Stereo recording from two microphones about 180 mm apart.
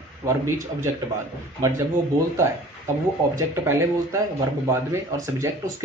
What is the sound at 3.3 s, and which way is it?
Speech, 15° right (ahead or behind).